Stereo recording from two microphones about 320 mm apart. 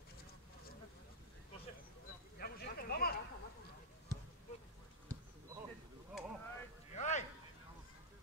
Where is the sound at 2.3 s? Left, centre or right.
Left.